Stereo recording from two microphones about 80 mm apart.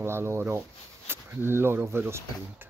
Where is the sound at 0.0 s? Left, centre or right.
Right.